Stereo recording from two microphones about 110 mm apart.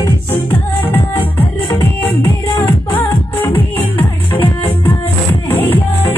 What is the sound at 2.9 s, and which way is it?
Music, 20° left (ahead or behind).